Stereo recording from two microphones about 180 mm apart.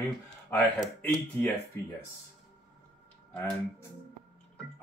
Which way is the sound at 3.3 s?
10° left (ahead or behind).